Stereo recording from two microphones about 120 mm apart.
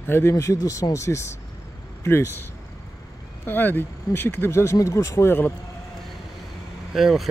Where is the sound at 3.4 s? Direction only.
15° left (ahead or behind).